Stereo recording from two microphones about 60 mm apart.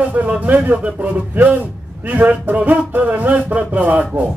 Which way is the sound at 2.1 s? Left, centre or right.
Right.